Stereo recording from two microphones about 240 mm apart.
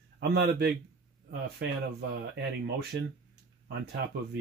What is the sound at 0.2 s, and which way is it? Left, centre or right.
Speech, right.